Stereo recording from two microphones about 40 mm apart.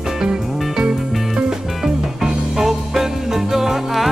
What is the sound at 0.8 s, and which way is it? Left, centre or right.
Music, right.